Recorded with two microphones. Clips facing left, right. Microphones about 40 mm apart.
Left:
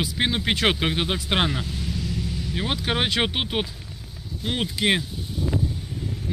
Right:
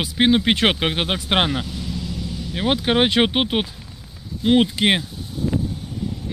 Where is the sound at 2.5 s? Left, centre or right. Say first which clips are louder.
Right 7 dB; right.